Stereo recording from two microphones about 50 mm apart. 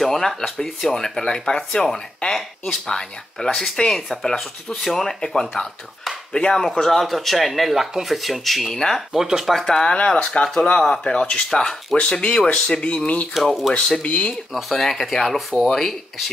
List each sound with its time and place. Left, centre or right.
0.0 s speech: centre
8.7 s speech: centre
9.1 s speech: centre
9.6 s speech: centre
13.3 s speech: centre; by 14.3 s left
14.3 s speech: centre
15.3 s speech: centre